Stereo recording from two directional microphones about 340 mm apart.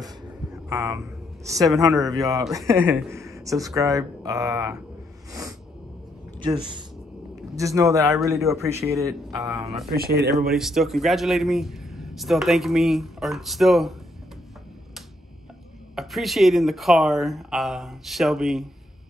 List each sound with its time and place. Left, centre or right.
0.0 s speech: centre
5.3 s a sound: centre
6.4 s a man's voice: centre
9.9 s speech: right
10.5 s a man's voice: centre
15.9 s a man's voice: centre